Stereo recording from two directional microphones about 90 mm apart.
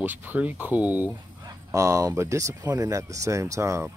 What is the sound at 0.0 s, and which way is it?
Speech, 20° right (ahead or behind).